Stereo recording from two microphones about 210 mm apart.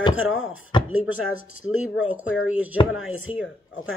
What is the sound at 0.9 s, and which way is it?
Speech, 70° left (ahead or behind).